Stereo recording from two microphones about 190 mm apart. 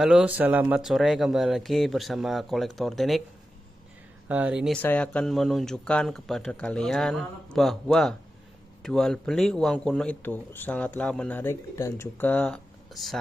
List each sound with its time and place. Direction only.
0.0 s speech: 5° right (ahead or behind)
4.3 s speech: 5° right (ahead or behind)
4.8 s speech: 5° left (ahead or behind)